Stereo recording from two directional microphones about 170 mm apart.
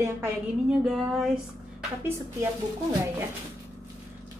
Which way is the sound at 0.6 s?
Centre (ahead or behind).